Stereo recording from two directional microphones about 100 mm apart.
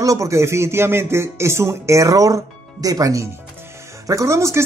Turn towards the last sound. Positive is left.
turn(degrees=-30)  # may be behind; listen again after turning